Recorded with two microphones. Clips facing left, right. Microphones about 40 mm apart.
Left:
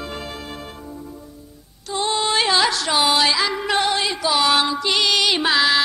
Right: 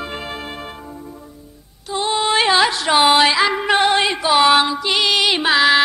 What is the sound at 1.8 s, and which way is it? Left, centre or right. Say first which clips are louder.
Music: right 2 dB; centre.